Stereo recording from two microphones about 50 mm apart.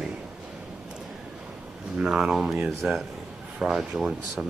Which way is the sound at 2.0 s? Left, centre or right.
Centre.